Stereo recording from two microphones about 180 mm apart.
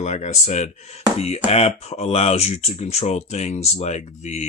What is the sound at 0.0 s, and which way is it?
Speech, 40° left (ahead or behind).